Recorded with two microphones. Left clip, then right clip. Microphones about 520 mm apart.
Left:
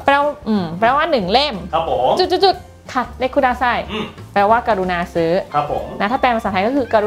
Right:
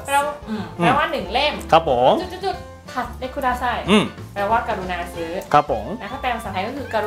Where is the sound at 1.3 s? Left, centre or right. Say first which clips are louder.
Even; left.